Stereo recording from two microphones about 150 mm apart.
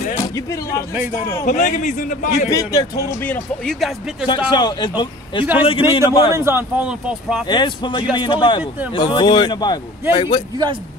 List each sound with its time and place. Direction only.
0.2 s speech: 20° left (ahead or behind)
1.4 s a man's voice: 55° left (ahead or behind)
2.5 s a man's voice: 25° left (ahead or behind)
3.2 s speech: 10° left (ahead or behind)
4.3 s a man's voice: 30° left (ahead or behind)
5.4 s speech: 10° right (ahead or behind)
5.7 s speech: 35° left (ahead or behind)
6.3 s speech: 15° right (ahead or behind)
7.4 s a man's voice: 30° left (ahead or behind)